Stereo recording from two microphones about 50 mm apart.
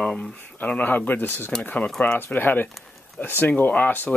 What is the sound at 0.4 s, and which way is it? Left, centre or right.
Speech, left.